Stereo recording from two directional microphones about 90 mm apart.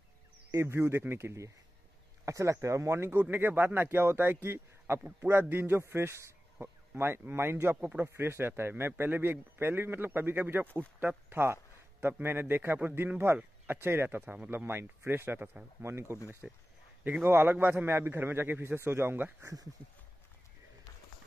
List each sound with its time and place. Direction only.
0.5 s speech: 30° right (ahead or behind)
7.7 s a man's voice: 15° right (ahead or behind)
14.2 s speech: 15° right (ahead or behind)
14.5 s speech: 25° right (ahead or behind)
15.8 s speech: 30° right (ahead or behind)
16.4 s speech: 10° right (ahead or behind)
17.2 s speech: 25° right (ahead or behind)